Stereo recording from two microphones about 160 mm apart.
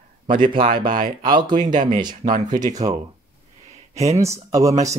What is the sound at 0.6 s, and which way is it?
Speech, 35° right (ahead or behind).